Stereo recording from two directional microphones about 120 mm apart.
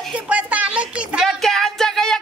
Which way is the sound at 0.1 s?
10° right (ahead or behind).